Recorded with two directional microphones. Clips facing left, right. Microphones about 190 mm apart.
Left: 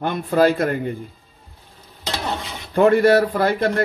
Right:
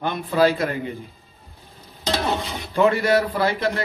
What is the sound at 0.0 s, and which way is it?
Speech, 50° left (ahead or behind).